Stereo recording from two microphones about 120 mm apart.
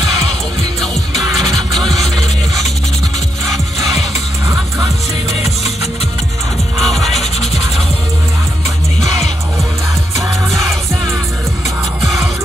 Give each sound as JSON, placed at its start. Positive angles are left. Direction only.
{"t": 1.7, "sound": "vehicle", "side_deg": 0}
{"t": 6.8, "sound": "music", "side_deg": 0}
{"t": 10.5, "sound": "music", "side_deg": 0}